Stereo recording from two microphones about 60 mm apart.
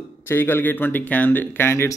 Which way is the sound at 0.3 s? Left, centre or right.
Left.